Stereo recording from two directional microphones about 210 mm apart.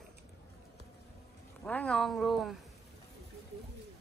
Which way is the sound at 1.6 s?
5° left (ahead or behind).